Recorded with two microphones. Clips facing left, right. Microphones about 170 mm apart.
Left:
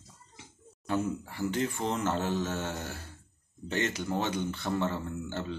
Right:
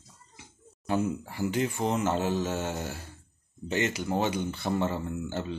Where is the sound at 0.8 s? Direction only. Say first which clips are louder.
Right 2 dB; 10° right (ahead or behind).